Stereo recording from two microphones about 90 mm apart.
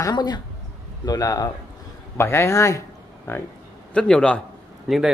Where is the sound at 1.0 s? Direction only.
40° left (ahead or behind).